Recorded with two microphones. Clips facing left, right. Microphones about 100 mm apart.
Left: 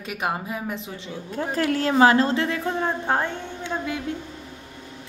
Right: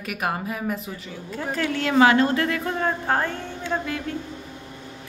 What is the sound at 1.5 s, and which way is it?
A woman's voice, 35° left (ahead or behind).